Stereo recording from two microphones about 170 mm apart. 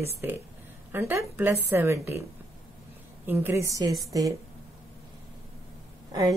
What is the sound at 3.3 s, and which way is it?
Speech, 15° right (ahead or behind).